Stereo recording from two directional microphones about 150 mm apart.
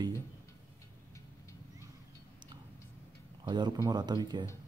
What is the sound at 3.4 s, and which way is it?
Speech, 25° right (ahead or behind).